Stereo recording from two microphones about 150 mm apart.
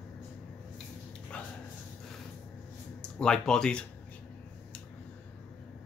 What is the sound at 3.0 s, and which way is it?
Speech, 5° left (ahead or behind).